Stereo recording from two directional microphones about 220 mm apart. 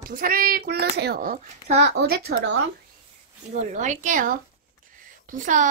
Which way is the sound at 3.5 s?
35° right (ahead or behind).